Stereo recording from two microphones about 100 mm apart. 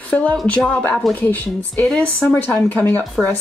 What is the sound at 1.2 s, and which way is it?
A woman's voice, 20° left (ahead or behind).